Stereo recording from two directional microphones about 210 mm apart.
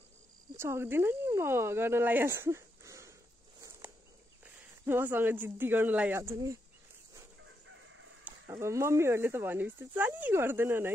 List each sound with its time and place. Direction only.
0.6 s speech: 10° right (ahead or behind)
3.8 s cricket: 10° right (ahead or behind)
4.8 s speech: 10° right (ahead or behind)
8.2 s speech: 10° right (ahead or behind)